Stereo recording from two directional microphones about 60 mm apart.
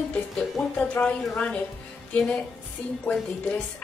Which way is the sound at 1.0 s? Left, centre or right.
Centre.